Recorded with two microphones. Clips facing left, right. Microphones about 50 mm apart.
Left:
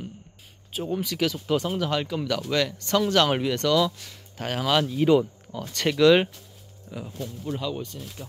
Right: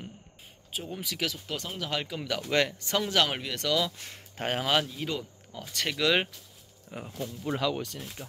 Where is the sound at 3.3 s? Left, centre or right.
Centre.